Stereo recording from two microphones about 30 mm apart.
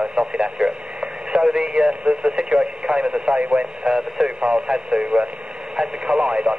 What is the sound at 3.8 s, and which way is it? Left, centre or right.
Radio, right.